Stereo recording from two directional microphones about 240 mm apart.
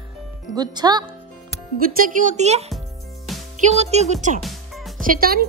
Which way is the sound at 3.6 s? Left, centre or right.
Right.